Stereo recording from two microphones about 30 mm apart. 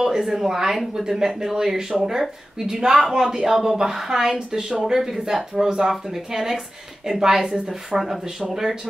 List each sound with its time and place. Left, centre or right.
0.0 s speech: centre
8.0 s speech: centre